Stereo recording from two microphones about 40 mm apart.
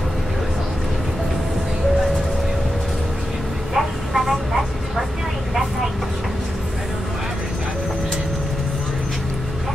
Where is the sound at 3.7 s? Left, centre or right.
Centre.